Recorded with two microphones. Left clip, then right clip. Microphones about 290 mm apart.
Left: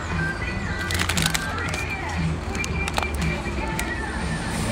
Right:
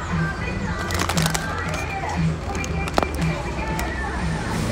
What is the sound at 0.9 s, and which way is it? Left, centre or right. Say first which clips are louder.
Music: even; centre.